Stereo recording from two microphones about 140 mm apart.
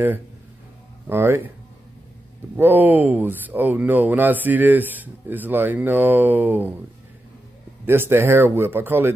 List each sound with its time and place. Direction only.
1.0 s speech: 15° right (ahead or behind)
2.5 s speech: 15° right (ahead or behind)
7.8 s speech: 15° right (ahead or behind)